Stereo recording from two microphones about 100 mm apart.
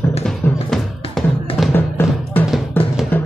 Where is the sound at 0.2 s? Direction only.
5° left (ahead or behind).